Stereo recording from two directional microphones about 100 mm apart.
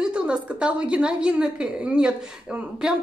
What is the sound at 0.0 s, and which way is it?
A woman's voice, 10° right (ahead or behind).